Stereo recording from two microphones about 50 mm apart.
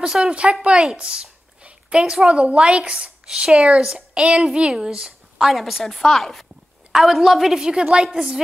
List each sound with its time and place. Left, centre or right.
0.0 s speech: centre
0.3 s a woman's voice: right
1.6 s a sound: centre
2.2 s a woman's voice: right; by 6.4 s centre
6.9 s a woman's voice: centre